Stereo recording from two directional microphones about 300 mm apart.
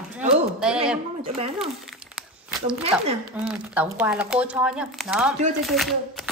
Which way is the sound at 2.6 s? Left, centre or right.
Centre.